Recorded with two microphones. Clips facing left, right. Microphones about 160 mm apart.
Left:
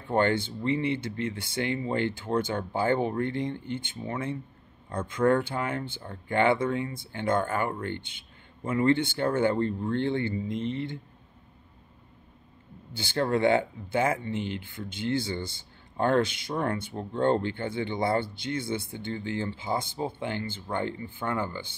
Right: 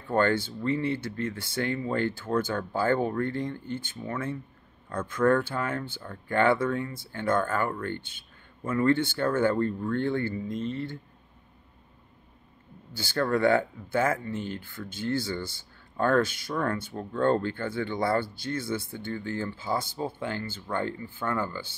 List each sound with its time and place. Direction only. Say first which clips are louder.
0.1 s speech: even; 20° left (ahead or behind)
12.9 s speech: even; 20° left (ahead or behind)